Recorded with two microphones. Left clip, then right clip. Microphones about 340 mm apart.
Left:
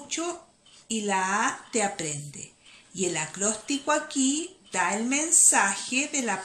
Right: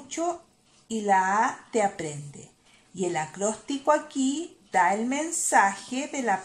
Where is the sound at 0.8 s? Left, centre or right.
Centre.